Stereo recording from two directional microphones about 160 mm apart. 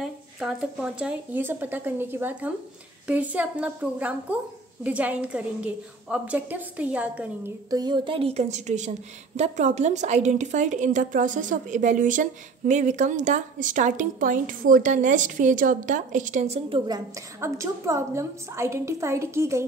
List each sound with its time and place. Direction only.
0.0 s speech: 5° right (ahead or behind)
7.7 s a woman's voice: 25° right (ahead or behind)